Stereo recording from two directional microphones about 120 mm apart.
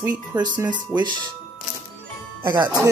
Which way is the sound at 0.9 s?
15° right (ahead or behind).